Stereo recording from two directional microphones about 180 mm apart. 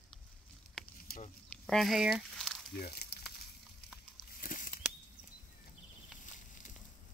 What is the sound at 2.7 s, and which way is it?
Speech, 60° left (ahead or behind).